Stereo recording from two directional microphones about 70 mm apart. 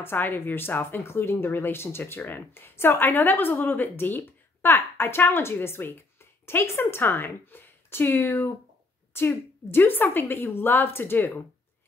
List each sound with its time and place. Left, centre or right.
0.0 s speech: left